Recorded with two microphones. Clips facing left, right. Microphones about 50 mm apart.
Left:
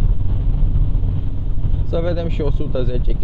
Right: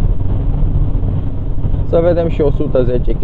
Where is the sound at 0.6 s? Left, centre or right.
Centre.